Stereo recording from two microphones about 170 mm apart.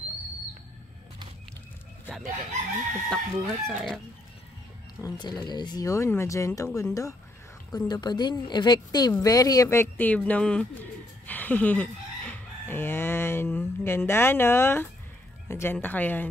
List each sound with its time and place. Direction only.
3.1 s speech: 5° left (ahead or behind)
5.0 s a woman's voice: 25° left (ahead or behind)